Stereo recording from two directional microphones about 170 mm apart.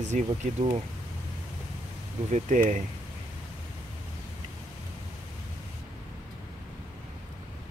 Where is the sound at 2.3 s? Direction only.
50° right (ahead or behind).